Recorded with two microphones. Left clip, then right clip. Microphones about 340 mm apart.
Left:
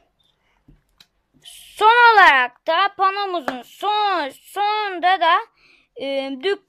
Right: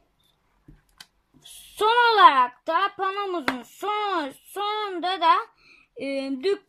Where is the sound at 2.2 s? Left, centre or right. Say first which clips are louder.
Left 3 dB; left.